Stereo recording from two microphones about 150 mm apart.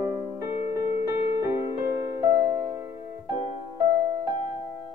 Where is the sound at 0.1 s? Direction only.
15° right (ahead or behind).